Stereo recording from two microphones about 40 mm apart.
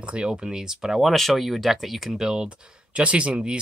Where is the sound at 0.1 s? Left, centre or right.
Right.